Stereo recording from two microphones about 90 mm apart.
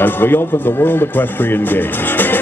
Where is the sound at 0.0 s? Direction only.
25° left (ahead or behind).